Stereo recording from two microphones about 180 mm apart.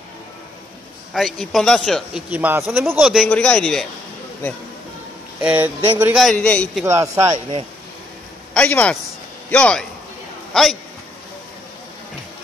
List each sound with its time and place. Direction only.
1.1 s a man's voice: centre (ahead or behind)
5.4 s a man's voice: 10° right (ahead or behind)
6.1 s a man's voice: 5° left (ahead or behind)
6.8 s a man's voice: 15° right (ahead or behind)
8.5 s a man's voice: 5° left (ahead or behind)